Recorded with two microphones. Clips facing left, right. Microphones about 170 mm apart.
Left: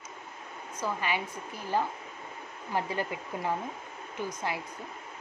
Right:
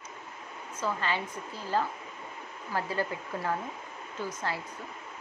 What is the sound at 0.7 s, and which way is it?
Speech, 15° left (ahead or behind).